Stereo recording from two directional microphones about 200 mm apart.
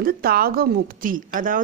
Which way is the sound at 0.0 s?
50° right (ahead or behind).